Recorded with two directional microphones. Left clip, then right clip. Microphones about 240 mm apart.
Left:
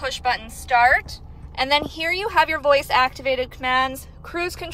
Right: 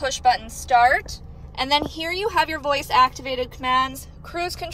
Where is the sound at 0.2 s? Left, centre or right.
Centre.